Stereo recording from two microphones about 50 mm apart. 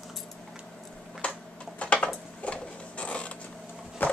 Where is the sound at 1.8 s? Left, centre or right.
Left.